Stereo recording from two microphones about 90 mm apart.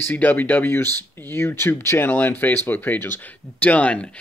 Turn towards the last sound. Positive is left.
turn(degrees=15)  # may be behind; listen again after turning